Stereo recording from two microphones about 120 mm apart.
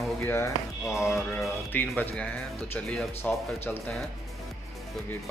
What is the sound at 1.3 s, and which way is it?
Speech, 15° left (ahead or behind).